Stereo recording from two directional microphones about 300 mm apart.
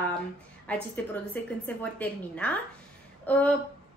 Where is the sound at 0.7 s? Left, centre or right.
Centre.